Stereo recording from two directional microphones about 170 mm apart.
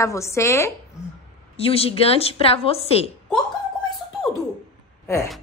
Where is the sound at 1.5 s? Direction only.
35° left (ahead or behind).